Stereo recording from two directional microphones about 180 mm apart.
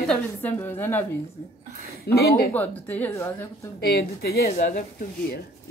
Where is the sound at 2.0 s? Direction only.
60° left (ahead or behind).